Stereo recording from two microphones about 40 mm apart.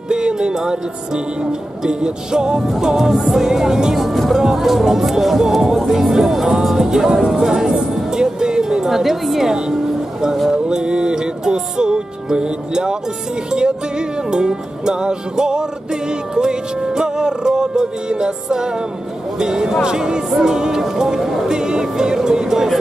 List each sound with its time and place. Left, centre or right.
0.1 s music: centre
2.8 s speech: centre
10.5 s music: right
19.8 s speech: centre